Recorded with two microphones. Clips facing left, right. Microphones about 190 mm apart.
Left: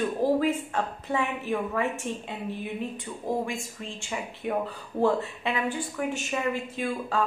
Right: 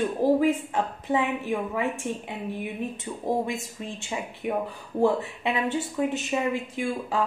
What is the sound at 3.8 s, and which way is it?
A woman's voice, 20° right (ahead or behind).